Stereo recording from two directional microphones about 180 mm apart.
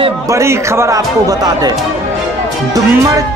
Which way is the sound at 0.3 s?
15° right (ahead or behind).